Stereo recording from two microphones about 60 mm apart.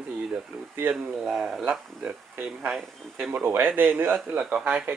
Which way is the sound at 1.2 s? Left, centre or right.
Centre.